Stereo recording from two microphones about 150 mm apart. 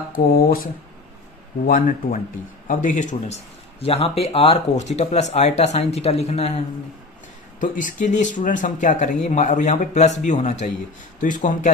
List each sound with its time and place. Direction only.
0.1 s speech: 70° left (ahead or behind)
1.7 s speech: 65° left (ahead or behind); by 6.6 s 45° left (ahead or behind)
7.6 s speech: 55° left (ahead or behind)